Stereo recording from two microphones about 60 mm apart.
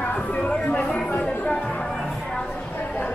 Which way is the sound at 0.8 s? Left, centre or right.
Centre.